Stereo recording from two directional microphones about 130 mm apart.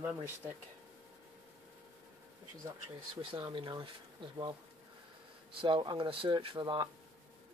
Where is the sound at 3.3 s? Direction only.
35° right (ahead or behind).